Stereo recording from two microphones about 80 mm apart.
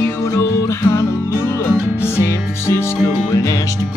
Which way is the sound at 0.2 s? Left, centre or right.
Left.